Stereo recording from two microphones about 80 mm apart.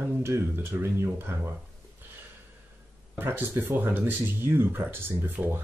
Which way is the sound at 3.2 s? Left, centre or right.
Right.